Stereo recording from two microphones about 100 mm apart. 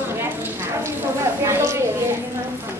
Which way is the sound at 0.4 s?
25° right (ahead or behind).